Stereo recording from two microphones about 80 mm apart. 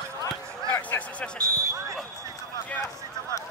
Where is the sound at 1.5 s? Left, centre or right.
Right.